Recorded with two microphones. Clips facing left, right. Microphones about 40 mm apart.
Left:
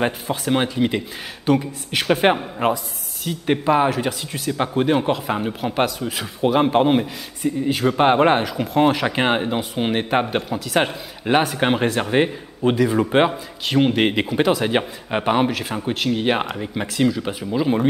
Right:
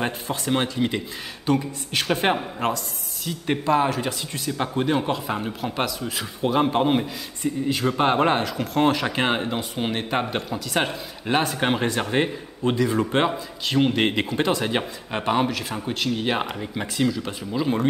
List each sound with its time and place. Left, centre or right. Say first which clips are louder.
0.0 s a man's voice: left 4 dB; centre
3.9 s a man's voice: left 3 dB; centre